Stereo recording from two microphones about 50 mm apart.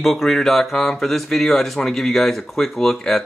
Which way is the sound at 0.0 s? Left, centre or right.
Centre.